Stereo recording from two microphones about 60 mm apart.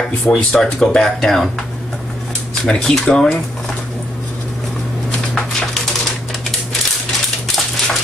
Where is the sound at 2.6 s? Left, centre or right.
Centre.